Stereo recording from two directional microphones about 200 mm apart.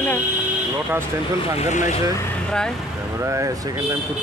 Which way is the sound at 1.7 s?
35° left (ahead or behind).